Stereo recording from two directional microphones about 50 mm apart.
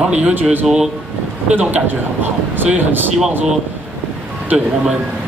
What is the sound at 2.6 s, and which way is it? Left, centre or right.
Speech, right.